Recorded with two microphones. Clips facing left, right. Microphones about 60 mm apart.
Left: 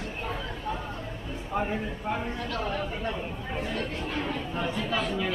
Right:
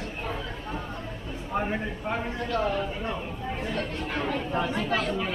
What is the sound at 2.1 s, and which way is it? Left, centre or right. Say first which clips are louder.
Speech: right 2 dB; right.